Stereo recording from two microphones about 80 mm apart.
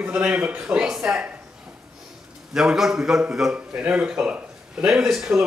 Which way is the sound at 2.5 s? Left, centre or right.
Centre.